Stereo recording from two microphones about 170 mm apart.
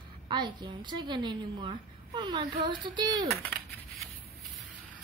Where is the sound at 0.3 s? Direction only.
25° right (ahead or behind).